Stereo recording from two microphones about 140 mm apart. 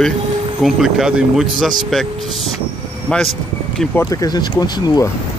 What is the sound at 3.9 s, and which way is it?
Speech, 25° left (ahead or behind).